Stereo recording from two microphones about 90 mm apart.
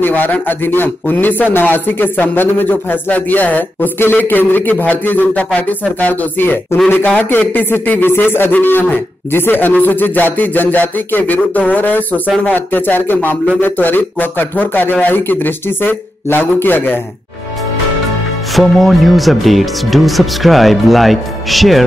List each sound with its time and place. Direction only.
0.0 s a man's voice: 20° left (ahead or behind)
18.5 s speech: centre (ahead or behind)